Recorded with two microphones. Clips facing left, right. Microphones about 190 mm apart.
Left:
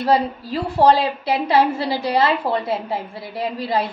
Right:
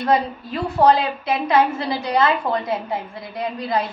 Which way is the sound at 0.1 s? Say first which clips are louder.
Left 2 dB; 30° left (ahead or behind).